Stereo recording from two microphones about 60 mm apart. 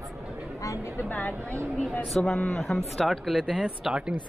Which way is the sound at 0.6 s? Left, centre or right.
Left.